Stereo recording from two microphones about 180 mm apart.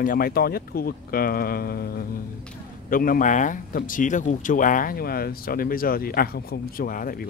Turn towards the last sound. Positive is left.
turn(degrees=50)  # may be behind; listen again after turning